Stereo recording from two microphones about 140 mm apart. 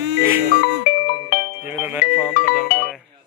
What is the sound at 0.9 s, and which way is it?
Music, 90° left.